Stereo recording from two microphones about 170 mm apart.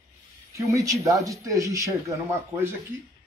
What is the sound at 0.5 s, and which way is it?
Speech, 20° right (ahead or behind).